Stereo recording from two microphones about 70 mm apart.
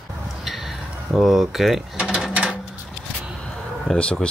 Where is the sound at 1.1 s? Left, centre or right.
Centre.